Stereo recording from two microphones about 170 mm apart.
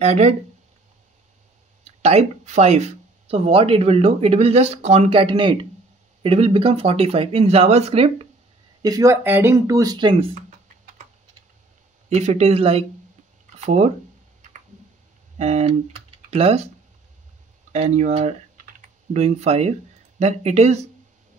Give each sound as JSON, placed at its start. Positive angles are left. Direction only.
{"t": 0.0, "sound": "speech", "side_deg": -40}
{"t": 2.0, "sound": "speech", "side_deg": -40}
{"t": 8.8, "sound": "speech", "side_deg": -20}
{"t": 12.1, "sound": "speech", "side_deg": -40}
{"t": 15.3, "sound": "speech", "side_deg": -40}
{"t": 17.7, "sound": "speech", "side_deg": -45}